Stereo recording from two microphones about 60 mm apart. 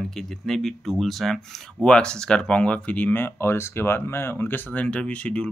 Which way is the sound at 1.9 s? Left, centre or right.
Centre.